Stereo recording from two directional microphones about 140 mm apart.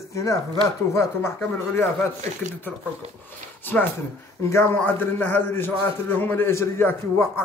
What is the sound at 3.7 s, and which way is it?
A man's voice, 15° left (ahead or behind).